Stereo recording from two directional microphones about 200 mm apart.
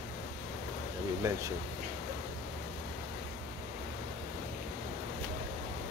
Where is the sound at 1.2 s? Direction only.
15° right (ahead or behind).